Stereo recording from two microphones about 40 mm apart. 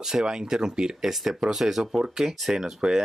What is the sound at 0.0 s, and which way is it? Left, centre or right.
Speech, centre.